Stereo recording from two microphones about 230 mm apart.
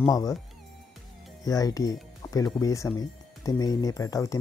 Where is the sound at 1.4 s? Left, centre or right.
Centre.